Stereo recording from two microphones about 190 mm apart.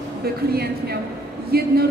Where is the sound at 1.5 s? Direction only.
55° right (ahead or behind).